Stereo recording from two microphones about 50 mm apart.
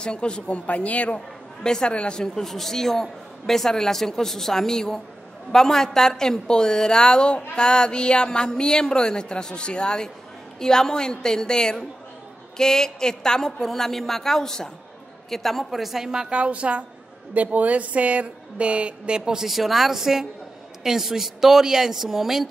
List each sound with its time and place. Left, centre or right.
0.0 s speech: centre
1.6 s a man's voice: centre